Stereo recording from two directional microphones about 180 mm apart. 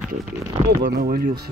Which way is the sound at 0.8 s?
55° right (ahead or behind).